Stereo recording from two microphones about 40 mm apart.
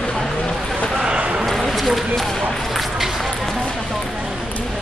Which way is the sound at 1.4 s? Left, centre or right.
Centre.